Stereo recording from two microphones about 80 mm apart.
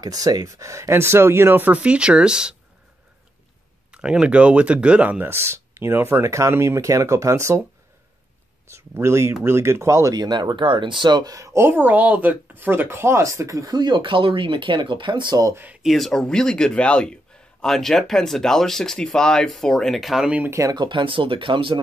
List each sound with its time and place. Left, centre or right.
0.0 s speech: right; by 2.5 s centre
3.9 s speech: centre
5.2 s speech: right
8.6 s speech: right
10.1 s speech: right
11.3 s speech: right
13.7 s speech: right
15.5 s speech: right
15.8 s a man's voice: centre
20.4 s speech: right
20.7 s speech: right